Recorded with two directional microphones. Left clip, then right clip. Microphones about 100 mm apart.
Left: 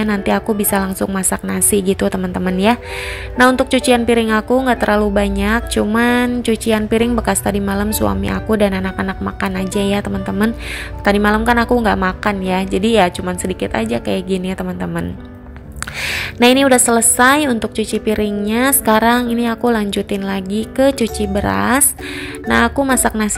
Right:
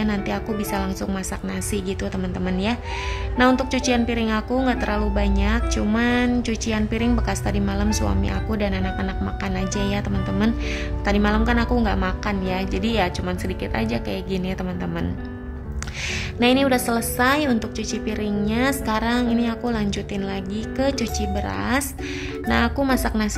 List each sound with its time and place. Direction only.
0.0 s a woman's voice: 45° left (ahead or behind)
3.3 s a woman's voice: 40° left (ahead or behind)
11.1 s a woman's voice: 40° left (ahead or behind)
16.0 s a woman's voice: 50° left (ahead or behind)